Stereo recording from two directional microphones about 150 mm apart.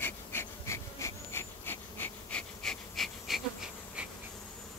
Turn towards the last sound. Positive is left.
turn(degrees=0)  # may be behind; listen again after turning